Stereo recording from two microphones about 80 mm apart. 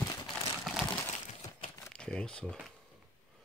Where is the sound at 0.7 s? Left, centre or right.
Centre.